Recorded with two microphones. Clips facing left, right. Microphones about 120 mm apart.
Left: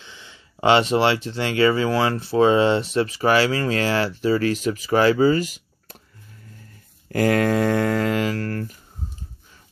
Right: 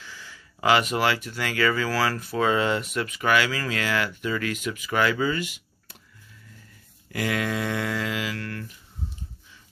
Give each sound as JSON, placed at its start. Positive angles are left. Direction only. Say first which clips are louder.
{"t": 0.0, "sound": "speech", "louder": "right 1 dB", "side_deg": 20}
{"t": 7.1, "sound": "speech", "louder": "left 8 dB", "side_deg": 45}